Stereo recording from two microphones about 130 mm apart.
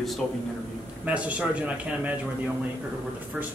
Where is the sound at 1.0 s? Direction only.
10° right (ahead or behind).